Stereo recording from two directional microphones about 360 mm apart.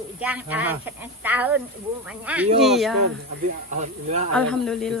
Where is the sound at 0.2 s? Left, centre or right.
Centre.